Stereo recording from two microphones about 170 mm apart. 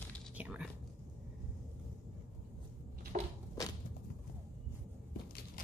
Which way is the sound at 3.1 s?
45° right (ahead or behind).